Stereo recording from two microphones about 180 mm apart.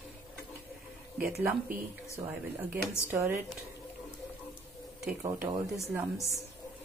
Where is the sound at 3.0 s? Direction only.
10° right (ahead or behind).